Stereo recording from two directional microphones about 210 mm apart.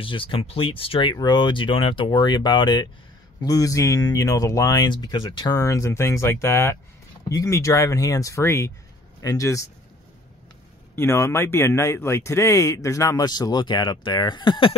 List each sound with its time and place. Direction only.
0.0 s speech: 25° left (ahead or behind)
11.0 s speech: 15° left (ahead or behind)